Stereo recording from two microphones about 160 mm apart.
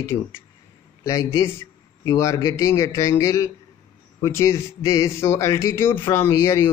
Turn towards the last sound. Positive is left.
turn(degrees=15)  # may be behind; listen again after turning